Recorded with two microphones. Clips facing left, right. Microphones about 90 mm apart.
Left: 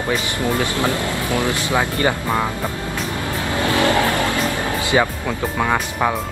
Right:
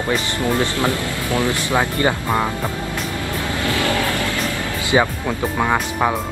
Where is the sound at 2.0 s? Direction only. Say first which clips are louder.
Even; 25° right (ahead or behind).